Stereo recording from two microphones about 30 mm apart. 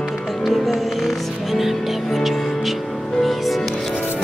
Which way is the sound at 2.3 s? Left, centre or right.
Centre.